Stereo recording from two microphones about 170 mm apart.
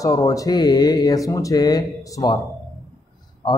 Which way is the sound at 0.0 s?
20° left (ahead or behind).